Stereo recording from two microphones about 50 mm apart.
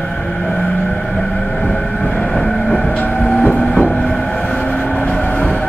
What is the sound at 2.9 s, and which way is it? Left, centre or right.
Vehicle, left.